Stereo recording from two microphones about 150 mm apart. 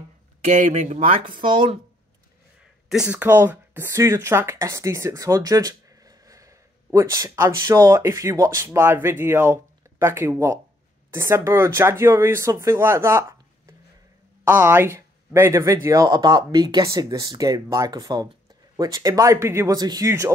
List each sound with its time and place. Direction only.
0.4 s speech: 50° right (ahead or behind); by 1.8 s 35° right (ahead or behind)
2.9 s speech: 5° right (ahead or behind)
14.5 s speech: 15° right (ahead or behind)